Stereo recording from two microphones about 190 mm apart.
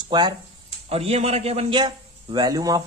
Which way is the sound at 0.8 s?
30° right (ahead or behind).